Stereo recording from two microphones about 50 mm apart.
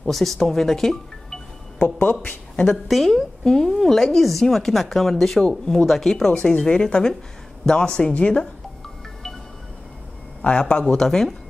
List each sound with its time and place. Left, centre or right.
0.1 s speech: centre
2.2 s speech: centre
2.7 s a woman's voice: centre
6.3 s a woman's voice: left
10.4 s a woman's voice: left